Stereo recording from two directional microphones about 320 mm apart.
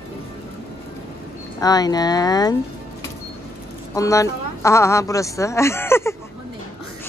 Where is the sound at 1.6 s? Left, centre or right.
Centre.